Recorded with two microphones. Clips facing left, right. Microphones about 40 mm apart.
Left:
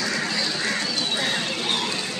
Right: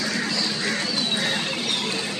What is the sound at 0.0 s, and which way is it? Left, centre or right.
Duck, centre.